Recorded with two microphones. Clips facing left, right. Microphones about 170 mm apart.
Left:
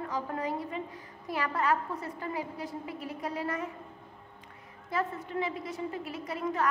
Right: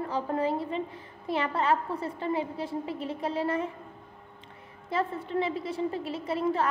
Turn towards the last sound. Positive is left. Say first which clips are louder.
# right 5 dB
turn(degrees=-30)  # may be behind; listen again after turning